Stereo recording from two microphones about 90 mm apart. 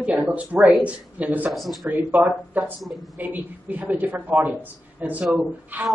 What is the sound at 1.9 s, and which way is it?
Speech, 20° right (ahead or behind).